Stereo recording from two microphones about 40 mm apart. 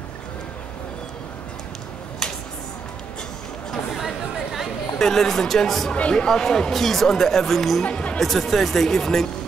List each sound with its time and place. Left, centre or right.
4.9 s speech: centre
5.9 s speech: left
6.2 s speech: centre
7.8 s speech: left
8.2 s speech: centre